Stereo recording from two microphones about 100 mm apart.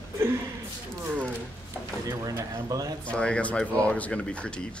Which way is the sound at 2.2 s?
35° right (ahead or behind).